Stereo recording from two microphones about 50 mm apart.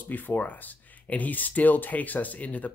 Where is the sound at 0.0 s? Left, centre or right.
Left.